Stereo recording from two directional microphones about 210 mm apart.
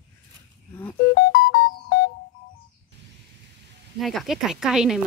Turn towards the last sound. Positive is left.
turn(degrees=-5)  # may be behind; listen again after turning